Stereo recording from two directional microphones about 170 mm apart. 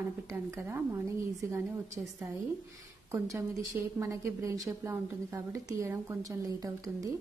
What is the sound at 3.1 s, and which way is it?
Speech, 15° right (ahead or behind).